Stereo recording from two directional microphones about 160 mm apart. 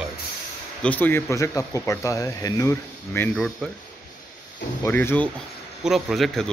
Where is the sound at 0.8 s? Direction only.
10° left (ahead or behind).